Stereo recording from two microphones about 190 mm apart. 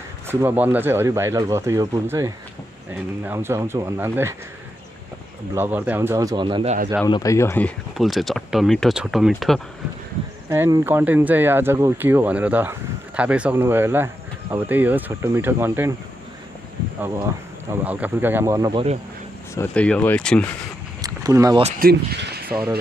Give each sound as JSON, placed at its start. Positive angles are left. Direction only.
{"t": 0.3, "sound": "speech", "side_deg": -10}
{"t": 5.5, "sound": "speech", "side_deg": -10}
{"t": 7.1, "sound": "speech", "side_deg": 20}
{"t": 10.5, "sound": "speech", "side_deg": -10}
{"t": 17.6, "sound": "speech", "side_deg": -10}
{"t": 19.5, "sound": "speech", "side_deg": 10}
{"t": 21.0, "sound": "a sound", "side_deg": -20}
{"t": 21.6, "sound": "speech", "side_deg": -50}